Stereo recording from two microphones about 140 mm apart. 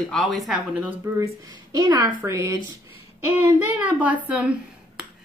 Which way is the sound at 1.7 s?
25° right (ahead or behind).